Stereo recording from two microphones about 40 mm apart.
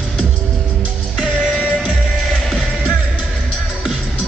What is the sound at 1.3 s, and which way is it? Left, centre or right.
Music, left.